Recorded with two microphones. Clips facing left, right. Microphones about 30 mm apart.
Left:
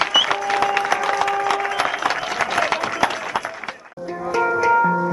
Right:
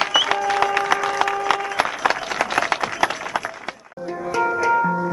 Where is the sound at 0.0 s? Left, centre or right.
Centre.